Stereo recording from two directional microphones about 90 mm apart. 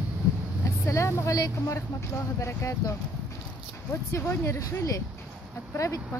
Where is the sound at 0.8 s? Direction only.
35° left (ahead or behind).